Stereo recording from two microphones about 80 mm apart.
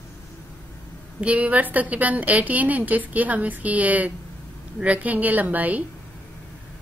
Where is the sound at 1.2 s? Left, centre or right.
Centre.